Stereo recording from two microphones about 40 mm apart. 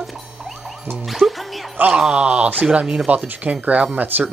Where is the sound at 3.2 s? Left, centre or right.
Right.